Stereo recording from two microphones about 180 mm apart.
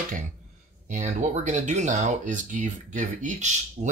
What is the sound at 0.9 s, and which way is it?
Speech, 40° right (ahead or behind).